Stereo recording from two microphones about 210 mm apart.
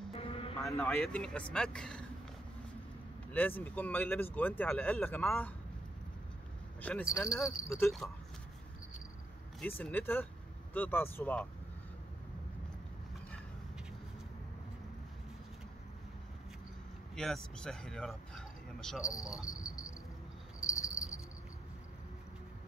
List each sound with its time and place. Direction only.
0.1 s vehicle: 25° left (ahead or behind)
0.7 s speech: 5° left (ahead or behind)
3.3 s speech: 10° left (ahead or behind)
6.8 s speech: 5° left (ahead or behind)
9.6 s speech: 5° left (ahead or behind)
17.1 s speech: 5° left (ahead or behind)
19.5 s cricket: 15° left (ahead or behind)